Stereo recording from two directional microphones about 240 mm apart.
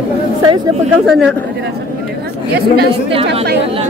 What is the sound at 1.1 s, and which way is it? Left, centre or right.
Speech, centre.